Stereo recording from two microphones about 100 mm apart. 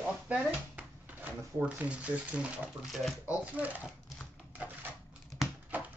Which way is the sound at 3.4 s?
15° right (ahead or behind).